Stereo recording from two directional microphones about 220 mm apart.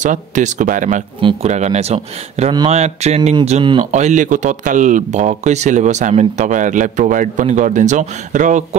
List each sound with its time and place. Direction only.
0.0 s speech: 35° right (ahead or behind)